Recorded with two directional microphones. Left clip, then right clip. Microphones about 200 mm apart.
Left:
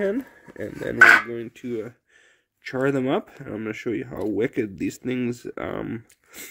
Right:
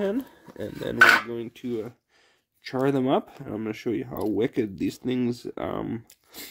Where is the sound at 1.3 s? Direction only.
5° left (ahead or behind).